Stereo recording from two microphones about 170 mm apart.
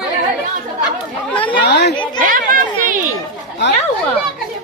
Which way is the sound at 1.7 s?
70° left (ahead or behind).